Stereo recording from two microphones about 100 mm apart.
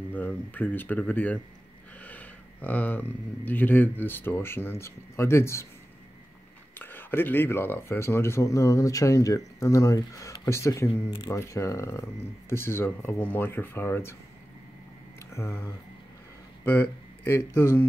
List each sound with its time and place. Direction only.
0.1 s speech: 15° left (ahead or behind)
6.7 s speech: 20° left (ahead or behind)
15.2 s speech: 25° left (ahead or behind)